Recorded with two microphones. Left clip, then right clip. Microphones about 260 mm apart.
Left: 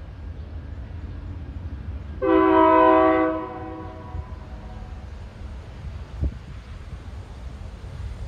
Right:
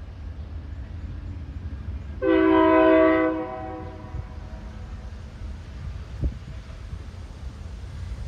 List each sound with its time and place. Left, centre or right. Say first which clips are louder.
2.1 s train: left 2 dB; centre